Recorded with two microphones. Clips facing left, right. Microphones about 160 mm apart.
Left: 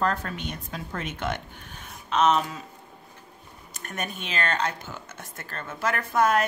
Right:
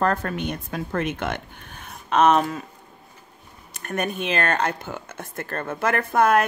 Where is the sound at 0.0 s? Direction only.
55° right (ahead or behind).